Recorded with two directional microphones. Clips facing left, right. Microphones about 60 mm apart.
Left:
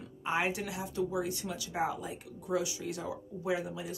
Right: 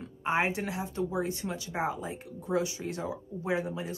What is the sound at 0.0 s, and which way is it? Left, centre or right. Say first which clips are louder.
Speech: right 3 dB; right.